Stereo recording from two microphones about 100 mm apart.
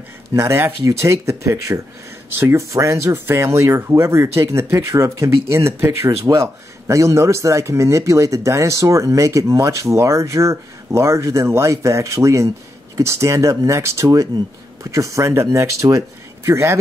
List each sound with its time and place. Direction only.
0.3 s speech: 25° right (ahead or behind)